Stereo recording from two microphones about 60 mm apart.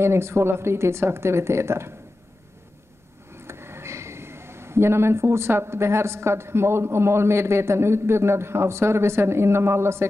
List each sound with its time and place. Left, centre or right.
0.0 s speech: right
3.3 s speech: right